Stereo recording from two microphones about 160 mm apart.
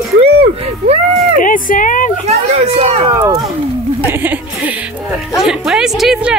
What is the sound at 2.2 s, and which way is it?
Speech, 40° right (ahead or behind).